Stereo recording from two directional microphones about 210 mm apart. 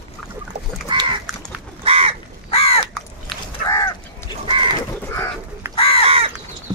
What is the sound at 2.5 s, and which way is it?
Crow, 30° left (ahead or behind).